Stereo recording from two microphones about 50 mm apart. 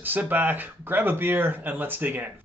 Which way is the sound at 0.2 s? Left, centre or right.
Right.